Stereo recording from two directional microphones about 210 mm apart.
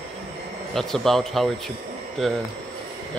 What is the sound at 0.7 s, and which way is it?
Speech, centre (ahead or behind).